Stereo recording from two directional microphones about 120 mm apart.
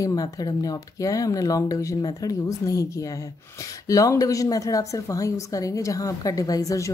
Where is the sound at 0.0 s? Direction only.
30° left (ahead or behind).